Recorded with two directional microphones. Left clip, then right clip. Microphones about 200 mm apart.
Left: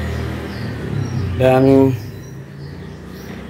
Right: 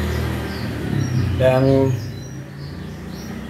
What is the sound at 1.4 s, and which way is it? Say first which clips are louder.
Speech: left 4 dB; 60° left (ahead or behind).